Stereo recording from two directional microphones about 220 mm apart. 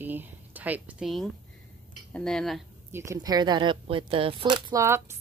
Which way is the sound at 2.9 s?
10° right (ahead or behind).